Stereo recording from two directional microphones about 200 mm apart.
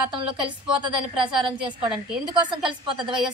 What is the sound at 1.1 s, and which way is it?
A woman's voice, 25° right (ahead or behind).